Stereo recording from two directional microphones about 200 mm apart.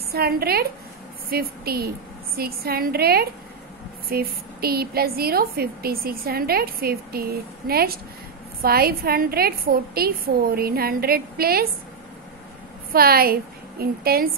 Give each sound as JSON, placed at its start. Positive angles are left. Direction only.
{"t": 0.1, "sound": "a woman's voice", "side_deg": -50}
{"t": 12.9, "sound": "a woman's voice", "side_deg": -50}